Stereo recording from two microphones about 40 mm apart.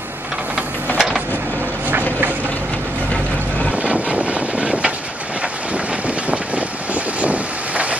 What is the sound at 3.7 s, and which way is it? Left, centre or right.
Vehicle, right.